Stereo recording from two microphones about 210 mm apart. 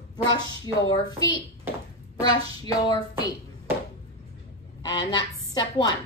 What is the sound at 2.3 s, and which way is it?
Speech, 20° left (ahead or behind).